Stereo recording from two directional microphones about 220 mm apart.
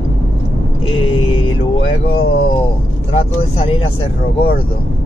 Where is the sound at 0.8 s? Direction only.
25° left (ahead or behind).